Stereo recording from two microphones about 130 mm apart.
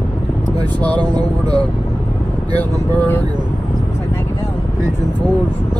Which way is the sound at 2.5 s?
10° left (ahead or behind).